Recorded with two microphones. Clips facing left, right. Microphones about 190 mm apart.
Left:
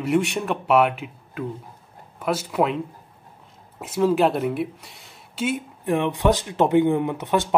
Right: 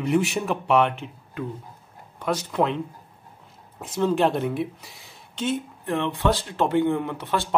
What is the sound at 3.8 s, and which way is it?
Speech, 5° left (ahead or behind).